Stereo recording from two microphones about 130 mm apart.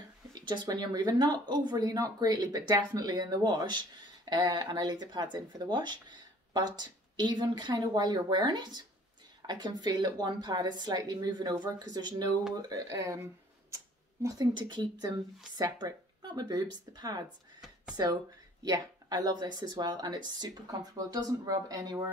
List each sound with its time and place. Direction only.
0.3 s speech: 35° right (ahead or behind)
14.2 s speech: 35° right (ahead or behind)